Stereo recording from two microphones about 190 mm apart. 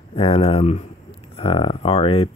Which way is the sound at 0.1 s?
30° left (ahead or behind).